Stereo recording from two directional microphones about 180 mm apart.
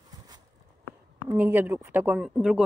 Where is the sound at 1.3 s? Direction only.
10° right (ahead or behind).